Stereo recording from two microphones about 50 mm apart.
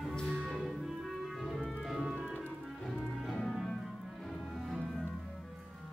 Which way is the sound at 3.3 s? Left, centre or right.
Centre.